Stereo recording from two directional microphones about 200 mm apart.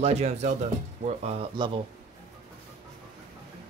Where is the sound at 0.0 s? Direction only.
35° right (ahead or behind).